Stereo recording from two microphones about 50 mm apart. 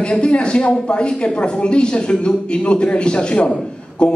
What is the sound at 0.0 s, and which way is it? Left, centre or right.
A woman's voice, left.